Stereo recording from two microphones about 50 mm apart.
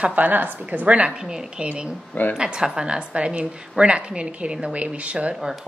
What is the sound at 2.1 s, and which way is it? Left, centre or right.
Speech, left.